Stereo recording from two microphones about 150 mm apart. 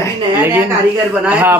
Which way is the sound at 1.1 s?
10° right (ahead or behind).